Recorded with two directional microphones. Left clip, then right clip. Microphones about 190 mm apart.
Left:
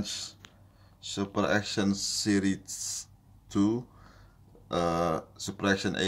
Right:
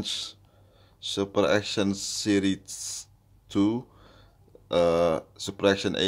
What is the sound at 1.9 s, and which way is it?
Speech, 55° right (ahead or behind).